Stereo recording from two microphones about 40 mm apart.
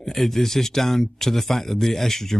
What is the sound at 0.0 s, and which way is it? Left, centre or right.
Speech, centre.